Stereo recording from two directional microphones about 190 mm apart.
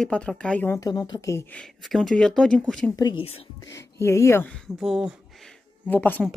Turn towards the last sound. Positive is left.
turn(degrees=10)  # may be behind; listen again after turning